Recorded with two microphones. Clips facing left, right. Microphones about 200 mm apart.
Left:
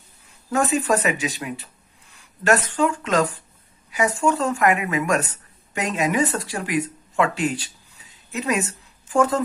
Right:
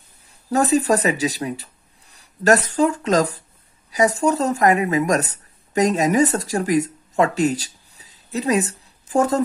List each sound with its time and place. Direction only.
0.5 s speech: 35° right (ahead or behind)